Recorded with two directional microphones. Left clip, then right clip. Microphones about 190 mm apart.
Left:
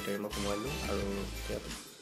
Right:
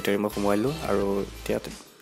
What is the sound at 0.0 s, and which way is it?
Speech, 55° right (ahead or behind).